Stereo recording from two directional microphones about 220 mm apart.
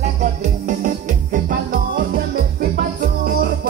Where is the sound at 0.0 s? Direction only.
35° right (ahead or behind).